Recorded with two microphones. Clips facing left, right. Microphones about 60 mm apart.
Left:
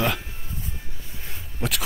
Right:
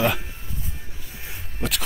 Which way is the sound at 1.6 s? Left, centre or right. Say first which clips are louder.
Even; centre.